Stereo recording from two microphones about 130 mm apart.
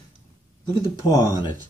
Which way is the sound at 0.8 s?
25° left (ahead or behind).